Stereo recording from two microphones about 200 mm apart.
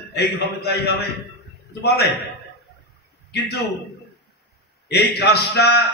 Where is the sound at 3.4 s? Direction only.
50° left (ahead or behind).